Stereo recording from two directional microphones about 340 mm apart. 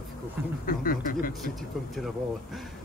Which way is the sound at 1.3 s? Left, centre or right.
Centre.